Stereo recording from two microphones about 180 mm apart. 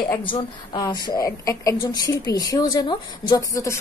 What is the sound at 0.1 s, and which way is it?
A woman's voice, 30° left (ahead or behind).